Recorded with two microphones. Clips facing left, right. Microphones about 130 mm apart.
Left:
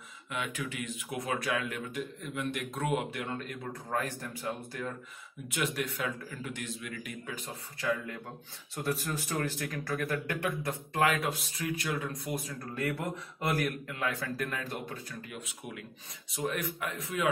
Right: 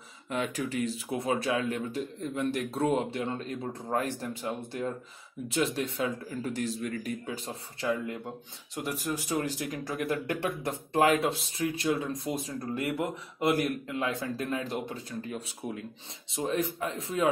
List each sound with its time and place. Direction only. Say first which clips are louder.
0.3 s speech: right 5 dB; 35° right (ahead or behind)
7.2 s speech: right 4 dB; 25° right (ahead or behind)
8.7 s speech: right 1 dB; 15° right (ahead or behind)